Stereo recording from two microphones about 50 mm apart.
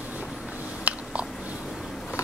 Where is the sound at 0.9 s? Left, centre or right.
Right.